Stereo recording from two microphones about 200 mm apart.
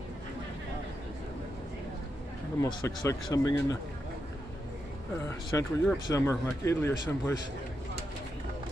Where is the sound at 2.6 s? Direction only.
20° left (ahead or behind).